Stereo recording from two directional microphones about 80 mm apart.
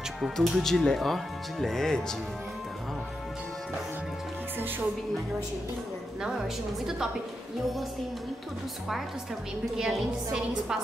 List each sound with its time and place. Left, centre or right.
0.2 s speech: centre
4.6 s speech: right
6.2 s a woman's voice: centre
9.8 s a woman's voice: centre